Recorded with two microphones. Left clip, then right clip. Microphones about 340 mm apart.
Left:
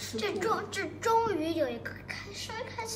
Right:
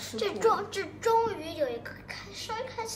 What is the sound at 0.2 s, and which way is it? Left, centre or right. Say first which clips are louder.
A woman's voice: right 5 dB; centre.